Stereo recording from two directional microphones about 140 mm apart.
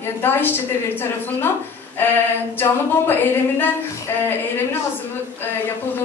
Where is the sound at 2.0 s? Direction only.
15° left (ahead or behind).